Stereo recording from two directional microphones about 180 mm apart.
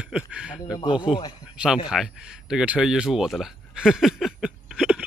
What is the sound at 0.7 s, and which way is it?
Speech, 25° left (ahead or behind).